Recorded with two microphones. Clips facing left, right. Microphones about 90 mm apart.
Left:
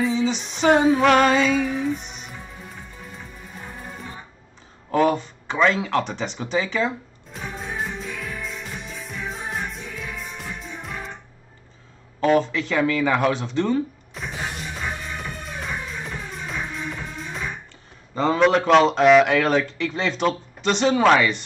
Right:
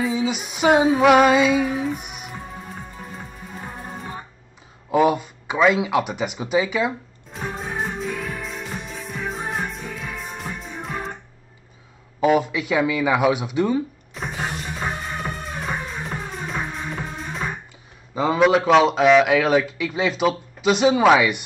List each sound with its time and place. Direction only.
0.0 s speech: 10° right (ahead or behind)
2.0 s music: 10° right (ahead or behind)
4.9 s speech: 10° right (ahead or behind)
7.5 s music: centre (ahead or behind)
8.5 s music: 50° right (ahead or behind)
8.8 s music: centre (ahead or behind)
12.2 s speech: 10° right (ahead or behind)
14.8 s music: 45° right (ahead or behind)
18.1 s a man's voice: 5° right (ahead or behind)